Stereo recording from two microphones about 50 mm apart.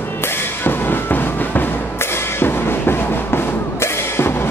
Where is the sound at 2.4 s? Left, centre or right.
Left.